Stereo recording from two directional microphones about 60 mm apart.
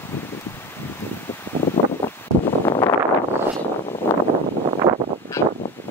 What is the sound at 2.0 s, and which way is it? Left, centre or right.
Wind noise, left.